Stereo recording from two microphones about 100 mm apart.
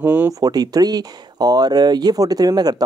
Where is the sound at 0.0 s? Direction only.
20° right (ahead or behind).